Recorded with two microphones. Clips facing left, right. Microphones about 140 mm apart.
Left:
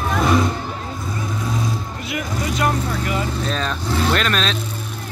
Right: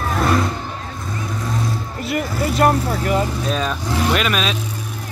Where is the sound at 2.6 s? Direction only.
45° right (ahead or behind).